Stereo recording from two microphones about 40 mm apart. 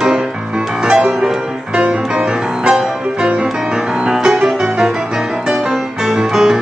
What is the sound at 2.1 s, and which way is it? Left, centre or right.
Music, centre.